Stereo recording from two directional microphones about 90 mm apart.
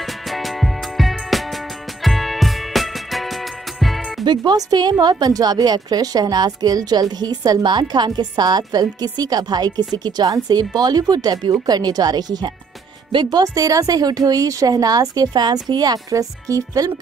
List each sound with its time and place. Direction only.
0.0 s music: centre (ahead or behind)
4.4 s a woman's voice: 45° right (ahead or behind)
13.4 s a woman's voice: 40° right (ahead or behind)